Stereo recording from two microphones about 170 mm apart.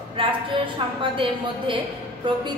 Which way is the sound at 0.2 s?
30° right (ahead or behind).